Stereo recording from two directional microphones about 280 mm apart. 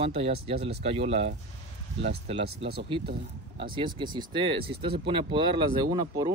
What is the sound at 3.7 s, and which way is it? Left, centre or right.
Speech, centre.